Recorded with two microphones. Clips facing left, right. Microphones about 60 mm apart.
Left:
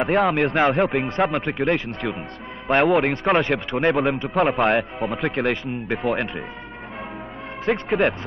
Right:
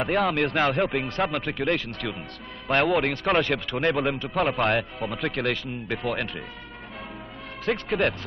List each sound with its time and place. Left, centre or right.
0.1 s a man's voice: centre
7.7 s a man's voice: centre